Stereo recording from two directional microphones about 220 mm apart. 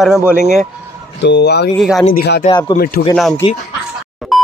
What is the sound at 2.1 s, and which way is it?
Speech, 45° left (ahead or behind).